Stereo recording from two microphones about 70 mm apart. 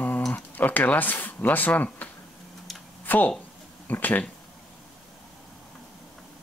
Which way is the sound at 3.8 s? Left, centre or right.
Left.